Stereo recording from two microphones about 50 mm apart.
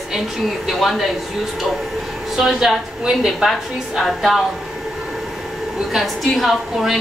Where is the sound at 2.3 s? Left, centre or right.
Centre.